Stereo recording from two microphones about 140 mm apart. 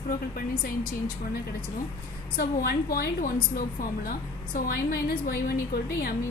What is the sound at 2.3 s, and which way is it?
A woman's voice, 90° left.